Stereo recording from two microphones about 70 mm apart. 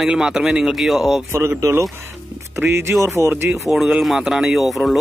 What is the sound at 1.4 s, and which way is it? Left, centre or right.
Speech, right.